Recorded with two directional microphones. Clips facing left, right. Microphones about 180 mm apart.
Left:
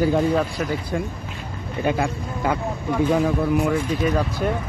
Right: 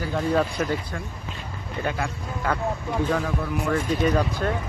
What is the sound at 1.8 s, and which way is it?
Speech, 15° left (ahead or behind).